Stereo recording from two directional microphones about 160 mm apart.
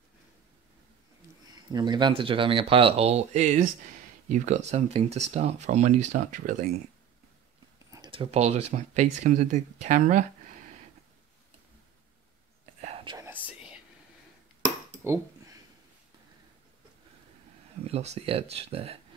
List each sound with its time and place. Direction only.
1.5 s speech: 25° right (ahead or behind); by 6.5 s 55° right (ahead or behind)
7.9 s speech: 30° right (ahead or behind); by 10.2 s 55° right (ahead or behind)
12.8 s whispering: 35° right (ahead or behind)
13.5 s whispering: 5° right (ahead or behind)
14.6 s a sound: 20° right (ahead or behind)
17.8 s speech: 40° right (ahead or behind)